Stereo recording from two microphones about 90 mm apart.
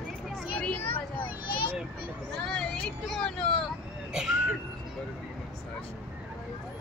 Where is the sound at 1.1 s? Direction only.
75° left (ahead or behind).